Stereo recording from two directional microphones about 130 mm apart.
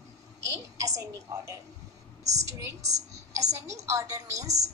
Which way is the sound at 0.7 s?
25° right (ahead or behind).